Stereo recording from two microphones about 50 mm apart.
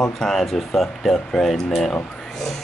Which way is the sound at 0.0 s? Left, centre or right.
Centre.